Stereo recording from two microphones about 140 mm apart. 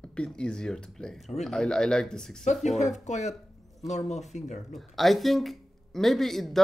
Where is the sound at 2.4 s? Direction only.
55° left (ahead or behind).